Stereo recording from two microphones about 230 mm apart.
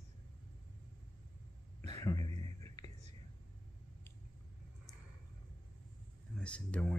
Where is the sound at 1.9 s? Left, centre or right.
Centre.